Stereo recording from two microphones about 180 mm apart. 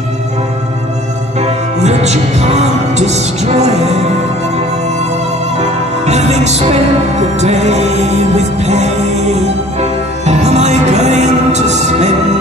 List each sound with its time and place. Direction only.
1.4 s music: 35° right (ahead or behind)
5.6 s music: 40° right (ahead or behind)